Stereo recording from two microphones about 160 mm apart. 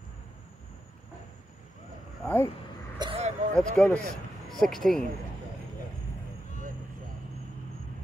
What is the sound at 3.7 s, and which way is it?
Speech, 5° left (ahead or behind).